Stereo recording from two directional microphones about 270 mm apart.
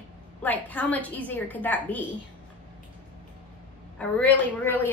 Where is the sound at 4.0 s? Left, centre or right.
Centre.